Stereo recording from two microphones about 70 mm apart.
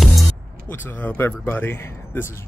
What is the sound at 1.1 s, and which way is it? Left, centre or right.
Speech, left.